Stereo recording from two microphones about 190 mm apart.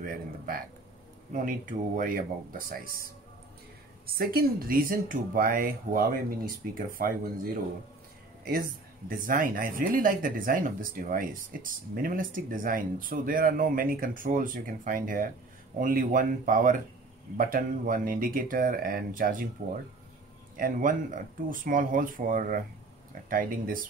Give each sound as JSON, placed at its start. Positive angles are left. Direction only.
{"t": 0.0, "sound": "speech", "side_deg": -50}
{"t": 4.1, "sound": "speech", "side_deg": -50}
{"t": 20.5, "sound": "speech", "side_deg": -45}